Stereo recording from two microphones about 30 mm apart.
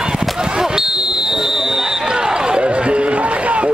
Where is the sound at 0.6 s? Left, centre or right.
Centre.